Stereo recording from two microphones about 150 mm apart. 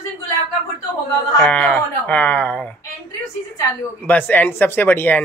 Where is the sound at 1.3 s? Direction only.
10° left (ahead or behind).